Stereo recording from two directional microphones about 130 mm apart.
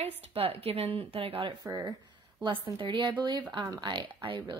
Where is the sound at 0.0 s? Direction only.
50° right (ahead or behind).